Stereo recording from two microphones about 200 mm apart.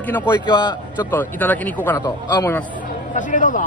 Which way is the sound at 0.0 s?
10° left (ahead or behind).